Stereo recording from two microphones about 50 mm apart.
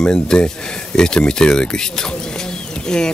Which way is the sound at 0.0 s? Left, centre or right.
Centre.